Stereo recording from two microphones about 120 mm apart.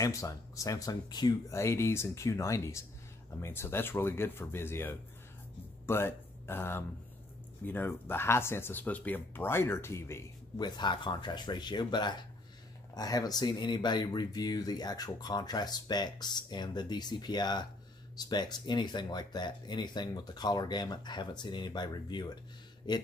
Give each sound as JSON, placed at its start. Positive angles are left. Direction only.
{"t": 0.0, "sound": "speech", "side_deg": 30}
{"t": 10.6, "sound": "speech", "side_deg": 40}